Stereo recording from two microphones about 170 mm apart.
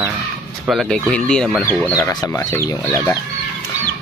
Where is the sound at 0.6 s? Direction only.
Centre (ahead or behind).